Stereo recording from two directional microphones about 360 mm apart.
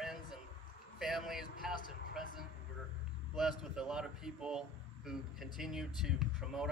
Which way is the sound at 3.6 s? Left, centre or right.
Centre.